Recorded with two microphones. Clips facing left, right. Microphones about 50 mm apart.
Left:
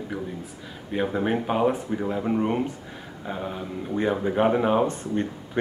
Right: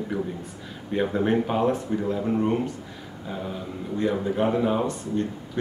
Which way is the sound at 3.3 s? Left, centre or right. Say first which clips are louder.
Left 1 dB; left.